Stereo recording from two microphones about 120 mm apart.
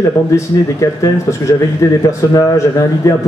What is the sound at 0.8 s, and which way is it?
Speech, 30° left (ahead or behind).